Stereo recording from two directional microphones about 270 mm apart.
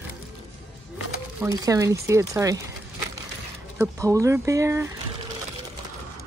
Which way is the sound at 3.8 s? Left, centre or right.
Centre.